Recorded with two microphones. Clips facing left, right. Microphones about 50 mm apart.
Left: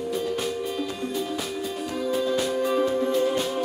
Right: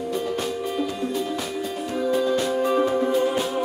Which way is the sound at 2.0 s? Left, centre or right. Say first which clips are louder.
Right 3 dB; centre.